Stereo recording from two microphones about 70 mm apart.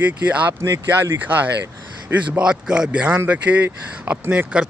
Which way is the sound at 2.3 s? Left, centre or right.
Centre.